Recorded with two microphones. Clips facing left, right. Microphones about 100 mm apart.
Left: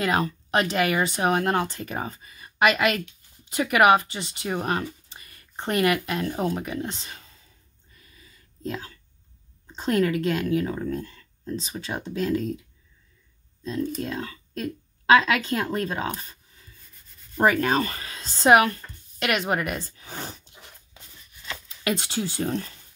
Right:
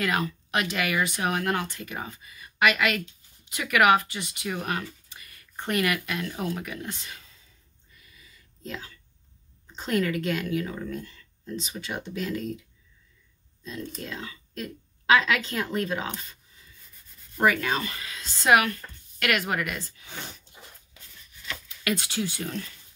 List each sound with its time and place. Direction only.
0.0 s speech: 30° left (ahead or behind)
8.0 s a sound: 40° left (ahead or behind)
9.7 s speech: 35° left (ahead or behind)
14.0 s speech: 40° left (ahead or behind)
17.4 s speech: 35° left (ahead or behind)
20.9 s writing: 25° left (ahead or behind)